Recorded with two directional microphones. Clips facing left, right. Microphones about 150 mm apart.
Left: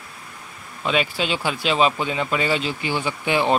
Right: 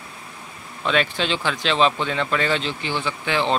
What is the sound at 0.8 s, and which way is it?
Speech, 10° left (ahead or behind).